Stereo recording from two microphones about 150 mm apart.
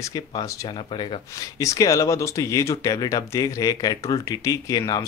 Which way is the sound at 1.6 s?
20° left (ahead or behind).